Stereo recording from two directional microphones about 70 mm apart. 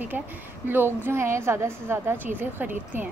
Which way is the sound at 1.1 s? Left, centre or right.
Right.